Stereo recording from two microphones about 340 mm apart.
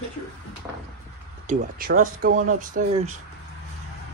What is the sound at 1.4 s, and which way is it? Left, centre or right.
Speech, right.